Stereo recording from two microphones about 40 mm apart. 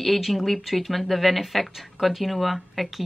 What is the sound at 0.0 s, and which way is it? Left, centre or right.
Speech, centre.